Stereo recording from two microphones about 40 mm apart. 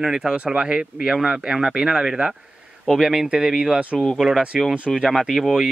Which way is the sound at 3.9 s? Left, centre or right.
Centre.